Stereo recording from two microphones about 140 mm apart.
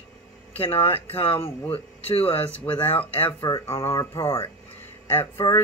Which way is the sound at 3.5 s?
20° left (ahead or behind).